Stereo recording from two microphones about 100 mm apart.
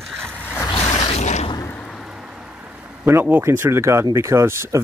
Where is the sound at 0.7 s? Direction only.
80° left.